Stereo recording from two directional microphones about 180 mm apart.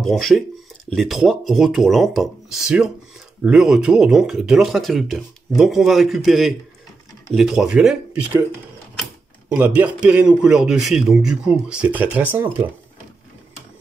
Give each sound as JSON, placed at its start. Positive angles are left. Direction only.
{"t": 0.0, "sound": "speech", "side_deg": 0}
{"t": 9.5, "sound": "a man's voice", "side_deg": -10}